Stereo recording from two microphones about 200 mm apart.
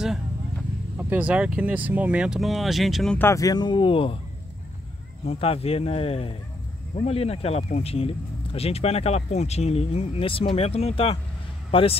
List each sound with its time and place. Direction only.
0.9 s speech: 5° right (ahead or behind); by 4.2 s 25° left (ahead or behind)
5.2 s speech: 30° left (ahead or behind)